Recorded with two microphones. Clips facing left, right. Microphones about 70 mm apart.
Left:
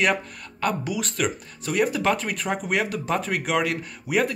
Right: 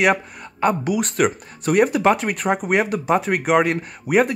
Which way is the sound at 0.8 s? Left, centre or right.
Right.